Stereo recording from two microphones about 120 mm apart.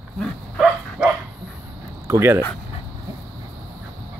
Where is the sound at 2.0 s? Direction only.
20° right (ahead or behind).